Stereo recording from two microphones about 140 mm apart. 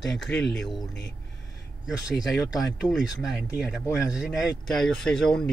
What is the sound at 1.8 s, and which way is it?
Speech, 5° right (ahead or behind).